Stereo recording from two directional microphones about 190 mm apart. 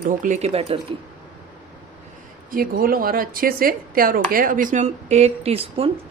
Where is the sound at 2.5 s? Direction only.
50° right (ahead or behind); by 5.9 s 30° right (ahead or behind).